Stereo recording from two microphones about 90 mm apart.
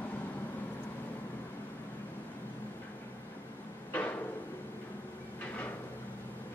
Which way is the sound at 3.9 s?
20° left (ahead or behind).